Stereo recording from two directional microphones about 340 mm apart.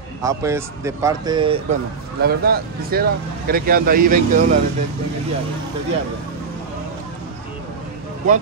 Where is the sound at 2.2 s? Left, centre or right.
Right.